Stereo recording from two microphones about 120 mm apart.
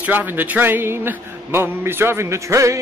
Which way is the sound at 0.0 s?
15° right (ahead or behind).